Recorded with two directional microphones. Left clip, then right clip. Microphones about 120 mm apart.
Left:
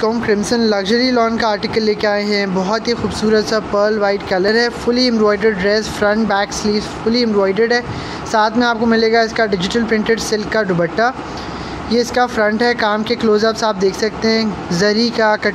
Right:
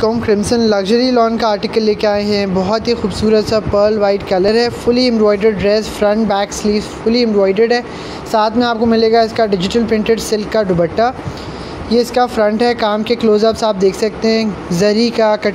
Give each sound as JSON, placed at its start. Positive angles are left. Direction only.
{"t": 0.0, "sound": "speech", "side_deg": -35}